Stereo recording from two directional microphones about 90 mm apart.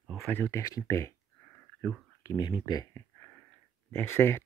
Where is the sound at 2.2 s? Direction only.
40° left (ahead or behind).